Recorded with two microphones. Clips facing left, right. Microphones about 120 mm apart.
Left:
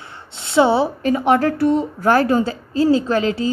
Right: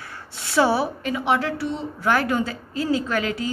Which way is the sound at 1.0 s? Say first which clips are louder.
Left 7 dB; 40° left (ahead or behind).